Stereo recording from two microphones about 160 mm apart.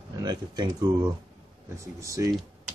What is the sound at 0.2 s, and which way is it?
Speech, 25° right (ahead or behind).